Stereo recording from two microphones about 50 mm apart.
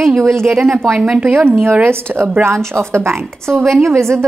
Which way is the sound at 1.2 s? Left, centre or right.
Right.